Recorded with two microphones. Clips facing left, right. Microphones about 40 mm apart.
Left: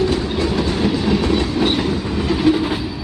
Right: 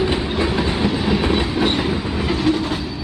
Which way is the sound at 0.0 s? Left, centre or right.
Right.